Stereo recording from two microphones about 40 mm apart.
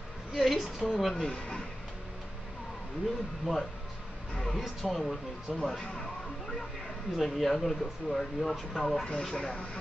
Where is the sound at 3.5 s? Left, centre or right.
Centre.